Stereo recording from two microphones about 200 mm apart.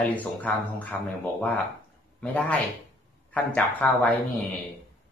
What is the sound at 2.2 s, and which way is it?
A man's voice, 5° left (ahead or behind).